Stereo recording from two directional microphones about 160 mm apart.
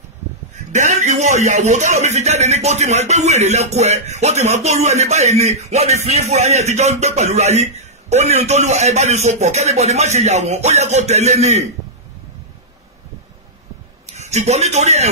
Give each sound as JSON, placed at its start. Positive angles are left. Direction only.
{"t": 0.7, "sound": "speech", "side_deg": -50}
{"t": 14.1, "sound": "a man's voice", "side_deg": -45}